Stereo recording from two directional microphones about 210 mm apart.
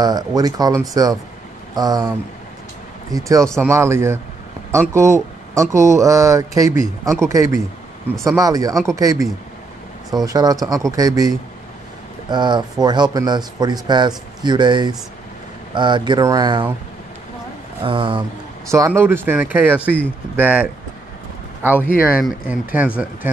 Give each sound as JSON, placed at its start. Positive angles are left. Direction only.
{"t": 0.0, "sound": "a man's voice", "side_deg": -20}
{"t": 17.8, "sound": "a man's voice", "side_deg": -25}
{"t": 18.7, "sound": "speech", "side_deg": -10}